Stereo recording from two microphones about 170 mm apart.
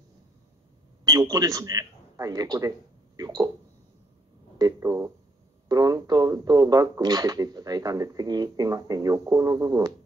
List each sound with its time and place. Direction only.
1.0 s a man's voice: 20° right (ahead or behind)
3.2 s a sound: 20° right (ahead or behind)
4.6 s speech: 20° right (ahead or behind)